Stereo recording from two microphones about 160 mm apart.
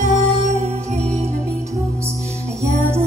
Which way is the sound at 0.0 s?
45° right (ahead or behind).